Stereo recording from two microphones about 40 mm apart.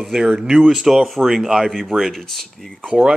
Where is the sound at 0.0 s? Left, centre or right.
Centre.